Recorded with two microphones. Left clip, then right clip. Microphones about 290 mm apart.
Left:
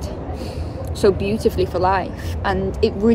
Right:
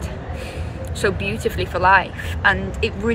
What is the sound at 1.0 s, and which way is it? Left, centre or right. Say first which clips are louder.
Speech: left 4 dB; centre.